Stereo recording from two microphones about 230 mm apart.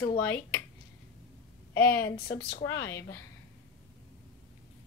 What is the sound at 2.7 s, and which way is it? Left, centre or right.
Speech, centre.